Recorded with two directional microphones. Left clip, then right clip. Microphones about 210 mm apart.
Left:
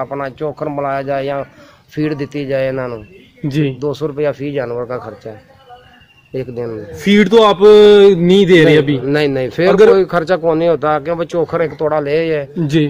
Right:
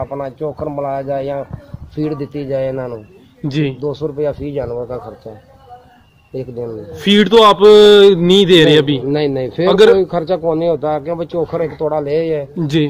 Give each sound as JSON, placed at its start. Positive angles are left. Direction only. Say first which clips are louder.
{"t": 0.0, "sound": "speech", "louder": "left 1 dB", "side_deg": 20}
{"t": 3.4, "sound": "speech", "louder": "left 1 dB", "side_deg": 45}
{"t": 3.8, "sound": "speech", "louder": "left 2 dB", "side_deg": 20}
{"t": 6.3, "sound": "speech", "louder": "left 2 dB", "side_deg": 25}
{"t": 7.0, "sound": "speech", "louder": "right 1 dB", "side_deg": 35}
{"t": 9.0, "sound": "speech", "louder": "left 2 dB", "side_deg": 10}
{"t": 12.5, "sound": "speech", "louder": "left 1 dB", "side_deg": 50}